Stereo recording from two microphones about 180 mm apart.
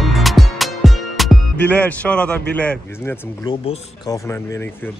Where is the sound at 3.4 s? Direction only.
25° left (ahead or behind).